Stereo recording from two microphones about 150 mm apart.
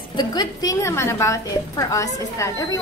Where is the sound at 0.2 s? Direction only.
30° left (ahead or behind).